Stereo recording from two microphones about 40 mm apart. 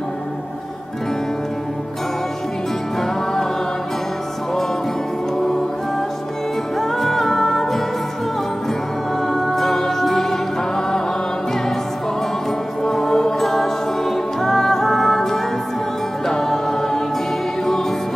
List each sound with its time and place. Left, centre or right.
6.8 s music: centre
9.2 s music: centre
12.8 s music: centre